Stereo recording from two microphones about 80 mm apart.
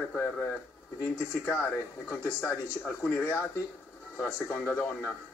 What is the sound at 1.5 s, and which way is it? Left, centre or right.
Speech, centre.